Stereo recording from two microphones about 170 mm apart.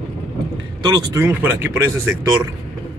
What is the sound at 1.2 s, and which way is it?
Speech, 15° right (ahead or behind).